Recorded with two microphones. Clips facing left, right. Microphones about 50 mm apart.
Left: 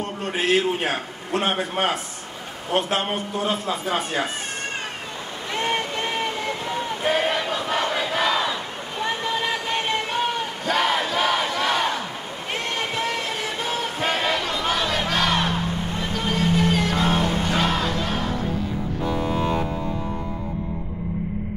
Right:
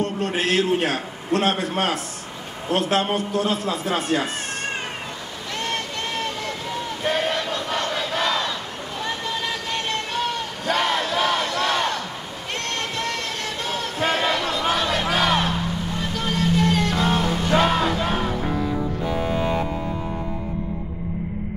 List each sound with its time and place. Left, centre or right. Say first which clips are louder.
0.0 s a man's voice: right 2 dB; centre
5.5 s a sound: left 3 dB; centre
10.6 s battle cry: even; centre
12.5 s music: left 1 dB; centre
19.2 s music: right 1 dB; centre